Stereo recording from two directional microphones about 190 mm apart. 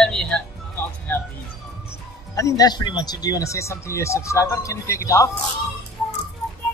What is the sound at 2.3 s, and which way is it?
Speech, 15° left (ahead or behind).